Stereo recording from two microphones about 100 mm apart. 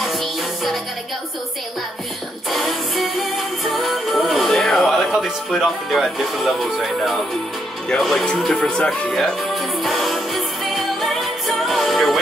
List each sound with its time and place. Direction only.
0.0 s music: centre (ahead or behind)
2.5 s music: centre (ahead or behind)